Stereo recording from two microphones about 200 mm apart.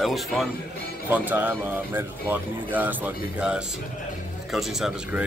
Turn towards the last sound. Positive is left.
turn(degrees=-5)  # may be behind; listen again after turning